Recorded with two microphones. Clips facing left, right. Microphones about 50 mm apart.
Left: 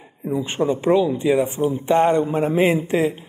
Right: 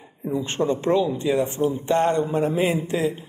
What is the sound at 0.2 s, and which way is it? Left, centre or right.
A man's voice, centre.